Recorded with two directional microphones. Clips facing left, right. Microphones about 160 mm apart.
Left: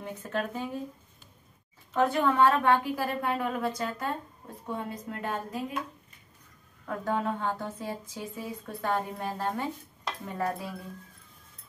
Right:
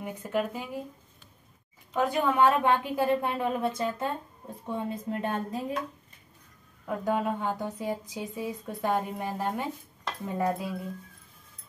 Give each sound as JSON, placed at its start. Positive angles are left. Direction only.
{"t": 0.0, "sound": "speech", "side_deg": -15}
{"t": 2.0, "sound": "a woman's voice", "side_deg": -15}
{"t": 6.9, "sound": "a woman's voice", "side_deg": -15}